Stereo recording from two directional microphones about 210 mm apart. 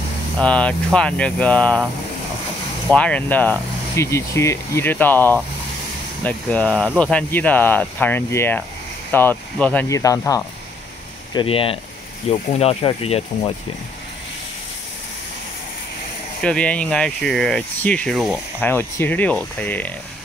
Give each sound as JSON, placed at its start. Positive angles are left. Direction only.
{"t": 0.4, "sound": "speech", "side_deg": 5}
{"t": 2.9, "sound": "speech", "side_deg": 5}
{"t": 11.3, "sound": "speech", "side_deg": 25}
{"t": 16.4, "sound": "speech", "side_deg": 5}
{"t": 18.6, "sound": "speech", "side_deg": 10}